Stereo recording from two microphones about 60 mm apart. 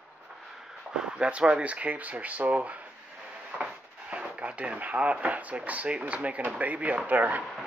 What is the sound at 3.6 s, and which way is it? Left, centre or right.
Drawer open or close, centre.